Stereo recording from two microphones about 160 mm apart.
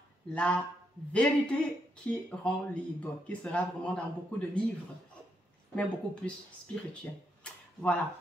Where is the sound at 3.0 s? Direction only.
10° left (ahead or behind).